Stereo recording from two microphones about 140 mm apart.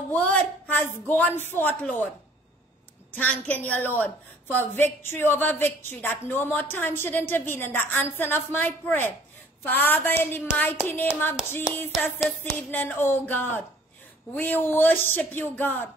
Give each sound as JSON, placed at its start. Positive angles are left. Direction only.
{"t": 0.1, "sound": "a woman's voice", "side_deg": 10}
{"t": 3.2, "sound": "a woman's voice", "side_deg": 10}
{"t": 11.9, "sound": "a sound", "side_deg": 5}
{"t": 12.7, "sound": "a woman's voice", "side_deg": 15}